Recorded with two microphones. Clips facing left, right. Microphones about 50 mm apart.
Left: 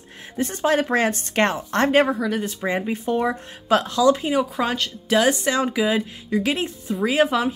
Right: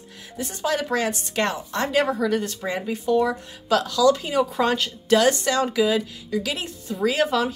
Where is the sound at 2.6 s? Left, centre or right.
Left.